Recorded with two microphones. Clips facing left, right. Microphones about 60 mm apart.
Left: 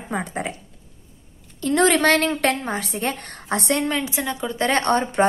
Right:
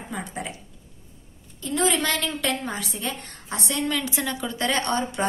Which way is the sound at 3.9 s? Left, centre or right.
Left.